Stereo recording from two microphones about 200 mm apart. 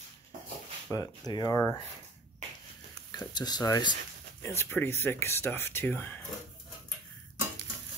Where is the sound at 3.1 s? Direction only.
20° left (ahead or behind).